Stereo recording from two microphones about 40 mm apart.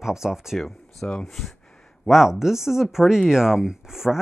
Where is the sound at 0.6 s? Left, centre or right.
Centre.